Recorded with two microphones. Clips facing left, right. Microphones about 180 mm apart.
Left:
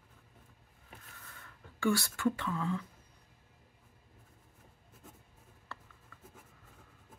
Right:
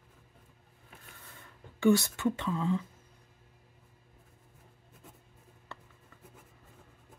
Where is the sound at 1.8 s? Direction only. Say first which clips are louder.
Right 6 dB; 20° right (ahead or behind).